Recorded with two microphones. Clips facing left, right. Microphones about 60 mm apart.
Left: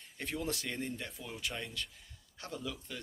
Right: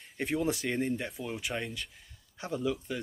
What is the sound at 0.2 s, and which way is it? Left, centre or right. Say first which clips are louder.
Speech: right 8 dB; centre.